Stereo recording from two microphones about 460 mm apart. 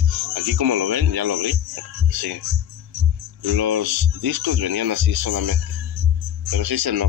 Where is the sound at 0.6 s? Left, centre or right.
Right.